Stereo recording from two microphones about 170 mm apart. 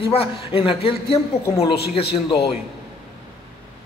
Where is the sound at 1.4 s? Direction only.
20° left (ahead or behind).